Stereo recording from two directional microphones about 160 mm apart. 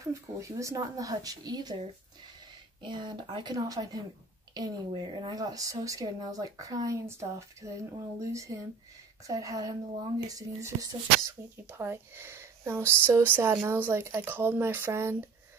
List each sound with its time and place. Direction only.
0.0 s speech: 20° right (ahead or behind)
2.8 s speech: 30° right (ahead or behind)